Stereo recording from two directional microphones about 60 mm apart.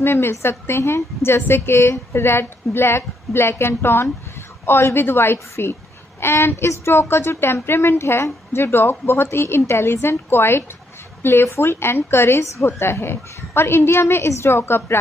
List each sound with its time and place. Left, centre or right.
0.0 s a woman's voice: left